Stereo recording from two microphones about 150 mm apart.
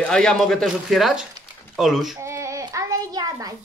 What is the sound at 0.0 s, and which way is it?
A man's voice, 5° left (ahead or behind).